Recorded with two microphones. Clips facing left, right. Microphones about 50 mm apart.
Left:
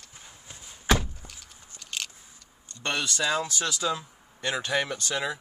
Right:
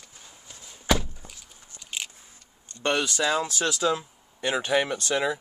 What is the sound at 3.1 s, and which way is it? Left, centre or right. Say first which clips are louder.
Speech: right 2 dB; centre.